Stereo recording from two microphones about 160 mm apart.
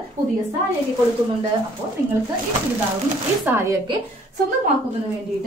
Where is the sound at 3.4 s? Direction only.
15° right (ahead or behind).